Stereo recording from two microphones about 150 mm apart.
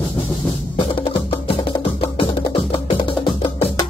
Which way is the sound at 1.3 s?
35° left (ahead or behind).